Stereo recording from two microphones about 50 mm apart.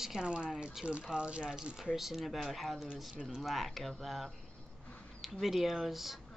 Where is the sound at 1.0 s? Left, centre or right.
Centre.